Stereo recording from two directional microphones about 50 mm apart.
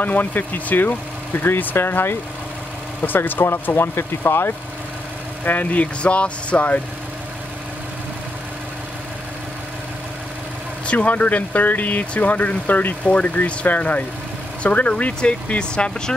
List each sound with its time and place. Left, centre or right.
0.0 s speech: left
5.4 s speech: left
10.9 s speech: left